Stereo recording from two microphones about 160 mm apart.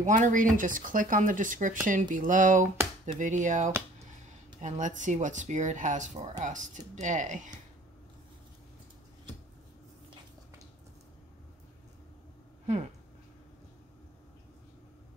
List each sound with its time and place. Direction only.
0.0 s speech: 50° right (ahead or behind)